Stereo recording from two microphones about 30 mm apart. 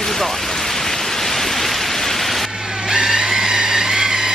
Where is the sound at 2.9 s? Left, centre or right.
Centre.